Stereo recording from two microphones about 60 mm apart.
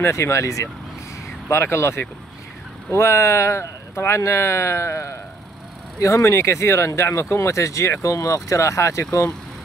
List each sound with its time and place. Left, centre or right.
0.0 s speech: left
1.5 s speech: left
5.9 s speech: left